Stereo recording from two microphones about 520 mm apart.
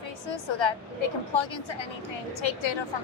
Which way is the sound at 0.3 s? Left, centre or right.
Left.